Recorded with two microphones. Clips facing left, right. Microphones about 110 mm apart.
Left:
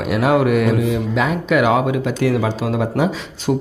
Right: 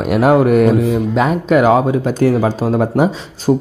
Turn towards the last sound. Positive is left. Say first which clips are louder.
# right 5 dB
turn(degrees=-15)  # may be behind; listen again after turning